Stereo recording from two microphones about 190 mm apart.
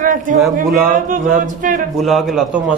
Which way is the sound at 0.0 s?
45° right (ahead or behind).